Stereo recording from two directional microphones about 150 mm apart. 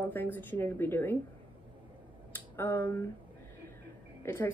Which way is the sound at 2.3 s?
15° left (ahead or behind).